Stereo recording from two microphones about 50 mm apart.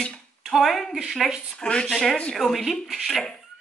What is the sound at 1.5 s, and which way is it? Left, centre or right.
Speech, left.